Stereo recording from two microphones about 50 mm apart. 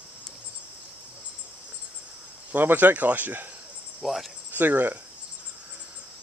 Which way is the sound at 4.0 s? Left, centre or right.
Centre.